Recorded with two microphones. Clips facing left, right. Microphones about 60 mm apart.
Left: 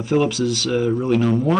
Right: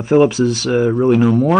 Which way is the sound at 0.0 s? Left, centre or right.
Right.